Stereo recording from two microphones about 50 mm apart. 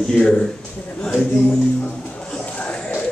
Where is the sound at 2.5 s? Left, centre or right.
Left.